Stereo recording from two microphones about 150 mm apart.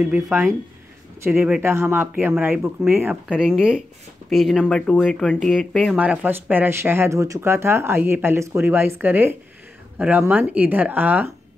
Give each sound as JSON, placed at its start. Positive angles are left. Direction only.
{"t": 1.2, "sound": "speech", "side_deg": -15}